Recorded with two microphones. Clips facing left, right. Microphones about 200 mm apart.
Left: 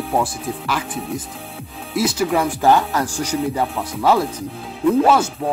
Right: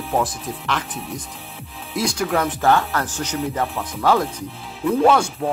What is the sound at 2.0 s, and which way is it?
Speech, 5° left (ahead or behind).